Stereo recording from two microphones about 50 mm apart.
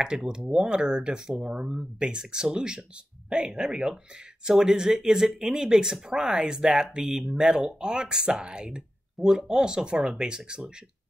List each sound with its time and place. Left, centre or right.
0.0 s speech: centre